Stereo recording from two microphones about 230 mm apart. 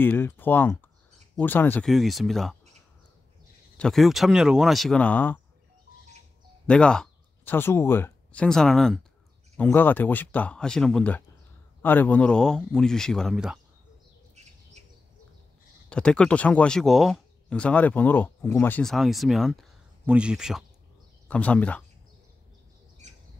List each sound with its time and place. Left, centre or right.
0.0 s speech: centre
3.7 s speech: centre
6.7 s speech: centre
14.3 s bird: right
15.9 s speech: centre